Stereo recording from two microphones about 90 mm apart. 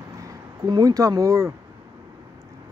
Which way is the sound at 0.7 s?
45° right (ahead or behind).